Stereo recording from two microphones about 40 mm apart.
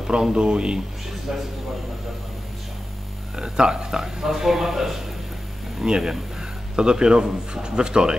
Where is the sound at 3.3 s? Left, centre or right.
Centre.